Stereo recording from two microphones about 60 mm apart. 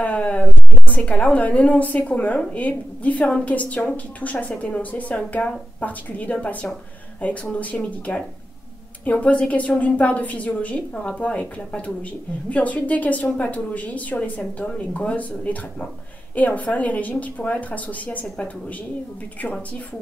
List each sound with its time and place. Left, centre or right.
0.0 s a woman's voice: left